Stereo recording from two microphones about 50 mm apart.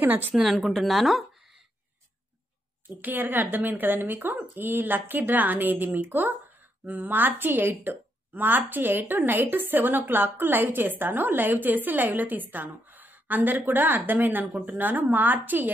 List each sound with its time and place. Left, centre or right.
0.5 s speech: centre
3.0 s a woman's voice: right